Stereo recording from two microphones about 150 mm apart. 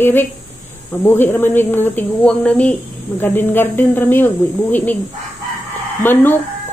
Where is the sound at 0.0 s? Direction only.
15° left (ahead or behind).